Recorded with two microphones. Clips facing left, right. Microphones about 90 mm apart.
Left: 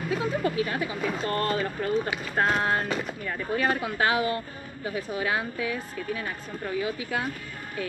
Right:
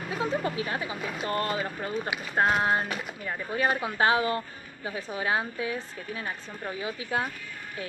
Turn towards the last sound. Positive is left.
turn(degrees=-30)  # may be behind; listen again after turning